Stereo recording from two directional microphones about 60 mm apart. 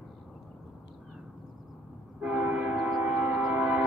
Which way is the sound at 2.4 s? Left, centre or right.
Right.